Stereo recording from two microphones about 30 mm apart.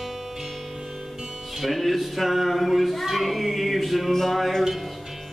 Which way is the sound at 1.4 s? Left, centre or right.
Centre.